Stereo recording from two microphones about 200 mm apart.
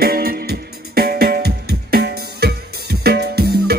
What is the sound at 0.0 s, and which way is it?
Music, 50° right (ahead or behind).